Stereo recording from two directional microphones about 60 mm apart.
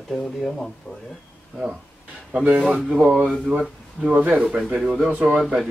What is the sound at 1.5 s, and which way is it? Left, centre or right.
Speech, centre.